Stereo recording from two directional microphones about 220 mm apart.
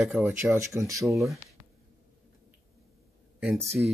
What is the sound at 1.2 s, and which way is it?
Speech, centre (ahead or behind).